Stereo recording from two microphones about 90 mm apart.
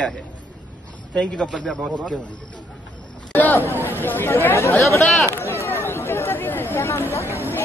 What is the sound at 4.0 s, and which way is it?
Speech, 25° left (ahead or behind).